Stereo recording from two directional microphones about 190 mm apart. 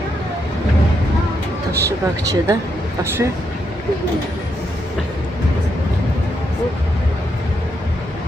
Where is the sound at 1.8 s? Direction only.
15° right (ahead or behind).